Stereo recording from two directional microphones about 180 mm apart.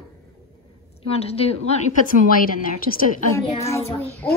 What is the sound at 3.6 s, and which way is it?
Child singing, 15° left (ahead or behind).